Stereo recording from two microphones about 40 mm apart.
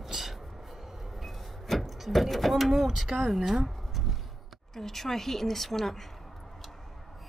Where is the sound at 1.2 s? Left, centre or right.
Centre.